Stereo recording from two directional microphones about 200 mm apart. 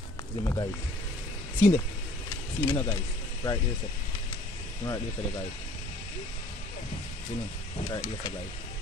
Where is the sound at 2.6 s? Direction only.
15° left (ahead or behind).